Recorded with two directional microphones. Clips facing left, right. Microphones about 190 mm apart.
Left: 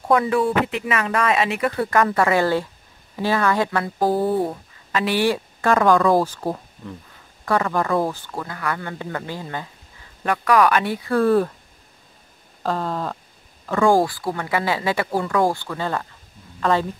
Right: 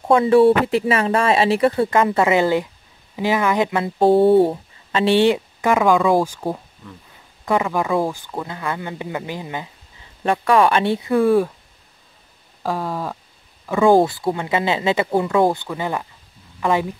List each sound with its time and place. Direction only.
0.1 s speech: 30° right (ahead or behind)
10.2 s speech: 25° right (ahead or behind); by 11.5 s 10° right (ahead or behind)
12.6 s speech: 10° right (ahead or behind)
13.7 s speech: 20° right (ahead or behind)